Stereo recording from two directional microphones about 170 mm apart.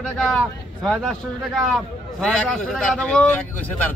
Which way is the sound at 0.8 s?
Centre (ahead or behind).